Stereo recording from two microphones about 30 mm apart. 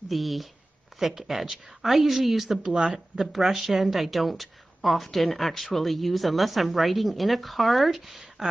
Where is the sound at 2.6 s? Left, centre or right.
Right.